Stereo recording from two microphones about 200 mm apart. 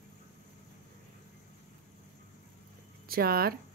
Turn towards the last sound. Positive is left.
turn(degrees=-50)  # may be behind; listen again after turning